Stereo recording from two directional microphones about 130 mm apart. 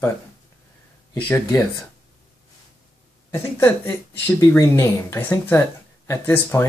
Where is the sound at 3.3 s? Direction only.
20° left (ahead or behind).